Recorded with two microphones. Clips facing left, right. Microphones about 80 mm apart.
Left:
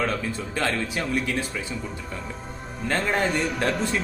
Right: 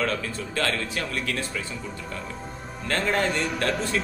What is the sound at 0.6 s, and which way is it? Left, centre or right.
Speech, centre.